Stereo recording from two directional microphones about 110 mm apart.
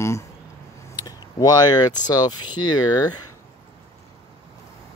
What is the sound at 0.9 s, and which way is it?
Speech, 35° left (ahead or behind).